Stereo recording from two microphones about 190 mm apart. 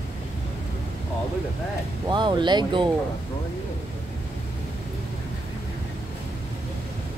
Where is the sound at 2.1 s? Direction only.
25° right (ahead or behind).